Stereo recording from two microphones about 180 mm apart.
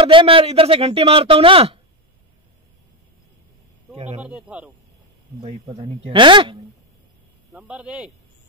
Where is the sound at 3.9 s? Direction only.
35° right (ahead or behind).